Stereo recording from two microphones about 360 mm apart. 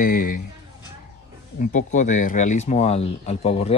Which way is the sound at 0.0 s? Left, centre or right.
Left.